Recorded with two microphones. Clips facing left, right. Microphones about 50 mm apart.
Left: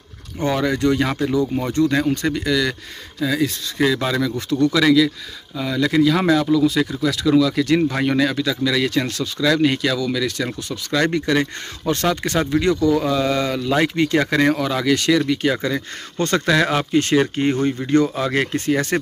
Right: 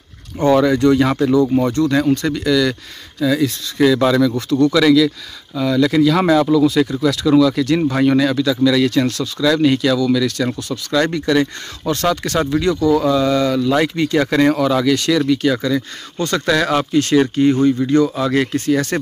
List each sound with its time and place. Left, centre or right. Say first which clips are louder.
0.5 s speech: right 6 dB; centre
1.7 s speech: right 3 dB; centre; by 16.4 s left
16.4 s speech: right 4 dB; centre